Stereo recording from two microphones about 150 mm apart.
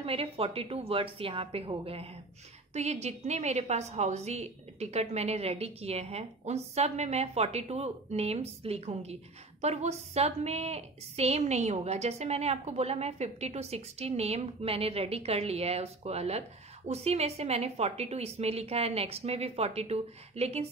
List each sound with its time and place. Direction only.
0.0 s a woman's voice: 40° right (ahead or behind)